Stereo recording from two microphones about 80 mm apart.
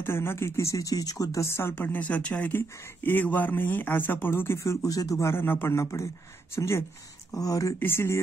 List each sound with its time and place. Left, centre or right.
0.0 s speech: left
1.4 s a woman's voice: left
4.8 s speech: left
7.3 s speech: left
7.8 s speech: left